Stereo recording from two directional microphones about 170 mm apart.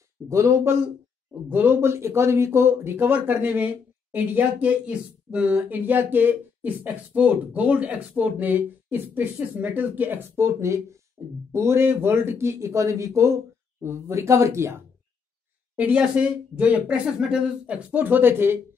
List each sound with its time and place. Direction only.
0.3 s speech: 15° right (ahead or behind)